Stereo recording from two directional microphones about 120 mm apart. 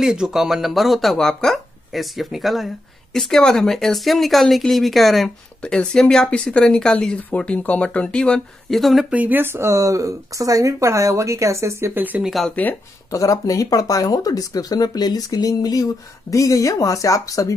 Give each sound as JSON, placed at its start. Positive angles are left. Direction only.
{"t": 0.0, "sound": "speech", "side_deg": -5}
{"t": 9.1, "sound": "speech", "side_deg": -15}
{"t": 12.2, "sound": "speech", "side_deg": 0}
{"t": 13.1, "sound": "speech", "side_deg": 25}